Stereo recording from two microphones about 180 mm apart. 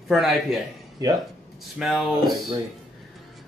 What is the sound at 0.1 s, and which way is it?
Speech, centre (ahead or behind).